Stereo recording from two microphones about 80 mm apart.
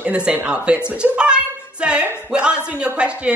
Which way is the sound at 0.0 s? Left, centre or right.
Centre.